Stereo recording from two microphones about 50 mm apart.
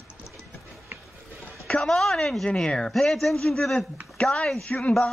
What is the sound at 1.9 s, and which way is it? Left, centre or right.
A woman's voice, centre.